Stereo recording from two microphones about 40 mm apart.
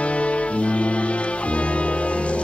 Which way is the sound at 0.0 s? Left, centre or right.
Left.